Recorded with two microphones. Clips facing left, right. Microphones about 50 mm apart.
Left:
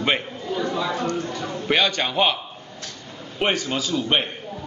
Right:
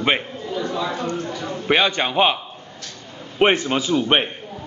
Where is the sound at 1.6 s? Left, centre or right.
Centre.